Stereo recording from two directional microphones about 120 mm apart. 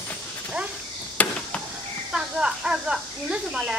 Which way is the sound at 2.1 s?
5° right (ahead or behind).